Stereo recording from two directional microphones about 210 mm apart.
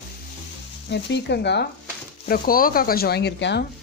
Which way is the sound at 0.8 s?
55° left (ahead or behind).